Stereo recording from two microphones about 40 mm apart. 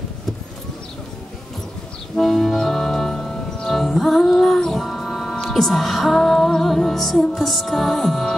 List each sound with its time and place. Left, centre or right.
2.1 s music: centre